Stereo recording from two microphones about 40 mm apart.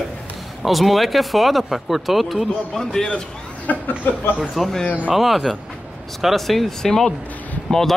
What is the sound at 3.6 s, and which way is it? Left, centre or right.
Speech, left.